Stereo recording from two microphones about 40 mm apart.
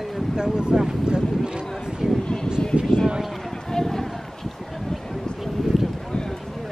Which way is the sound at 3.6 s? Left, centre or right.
Centre.